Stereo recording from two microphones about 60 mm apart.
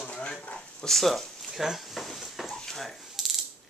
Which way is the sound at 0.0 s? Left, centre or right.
Centre.